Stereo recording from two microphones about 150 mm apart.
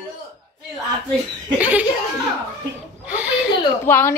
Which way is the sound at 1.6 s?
10° right (ahead or behind).